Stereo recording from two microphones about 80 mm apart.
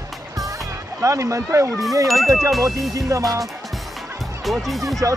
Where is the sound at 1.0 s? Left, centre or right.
Right.